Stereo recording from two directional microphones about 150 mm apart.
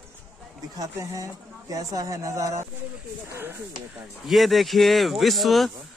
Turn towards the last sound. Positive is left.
turn(degrees=0)  # may be behind; listen again after turning